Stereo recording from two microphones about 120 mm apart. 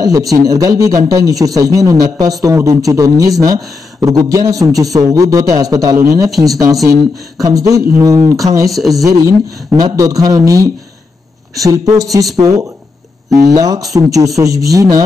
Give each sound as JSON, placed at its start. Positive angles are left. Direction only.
{"t": 0.0, "sound": "a man's voice", "side_deg": -30}